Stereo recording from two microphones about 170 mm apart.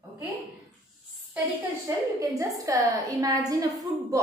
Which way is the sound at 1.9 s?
20° right (ahead or behind).